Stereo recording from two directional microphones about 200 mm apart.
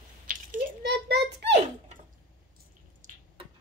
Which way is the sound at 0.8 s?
55° right (ahead or behind).